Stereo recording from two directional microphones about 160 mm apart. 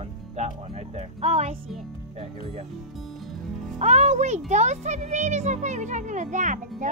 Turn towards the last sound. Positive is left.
turn(degrees=-50)  # may be behind; listen again after turning